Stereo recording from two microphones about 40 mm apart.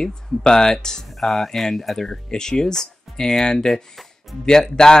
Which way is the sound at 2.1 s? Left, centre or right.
Centre.